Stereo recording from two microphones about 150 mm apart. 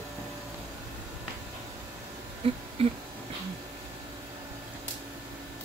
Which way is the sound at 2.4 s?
40° right (ahead or behind).